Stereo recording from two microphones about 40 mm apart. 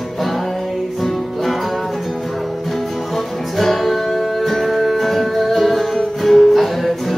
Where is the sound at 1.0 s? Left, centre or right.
Centre.